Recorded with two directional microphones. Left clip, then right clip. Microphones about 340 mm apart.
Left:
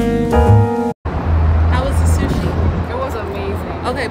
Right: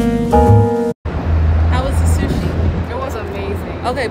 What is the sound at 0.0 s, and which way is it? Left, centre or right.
Music, centre.